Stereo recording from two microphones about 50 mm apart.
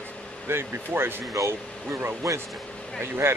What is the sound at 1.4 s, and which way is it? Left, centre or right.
Speech, right.